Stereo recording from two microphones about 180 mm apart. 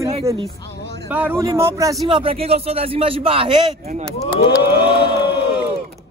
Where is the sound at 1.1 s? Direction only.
10° right (ahead or behind); by 3.6 s 30° right (ahead or behind).